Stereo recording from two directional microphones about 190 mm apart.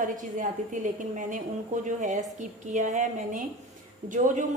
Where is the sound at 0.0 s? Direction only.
45° right (ahead or behind).